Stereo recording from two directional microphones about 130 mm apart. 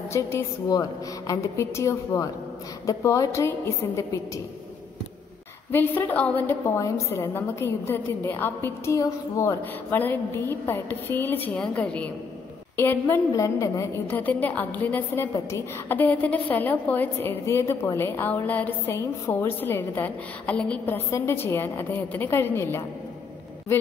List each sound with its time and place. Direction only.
0.1 s a woman's voice: 20° left (ahead or behind)
5.7 s a woman's voice: 15° left (ahead or behind)
14.0 s a woman's voice: 15° left (ahead or behind)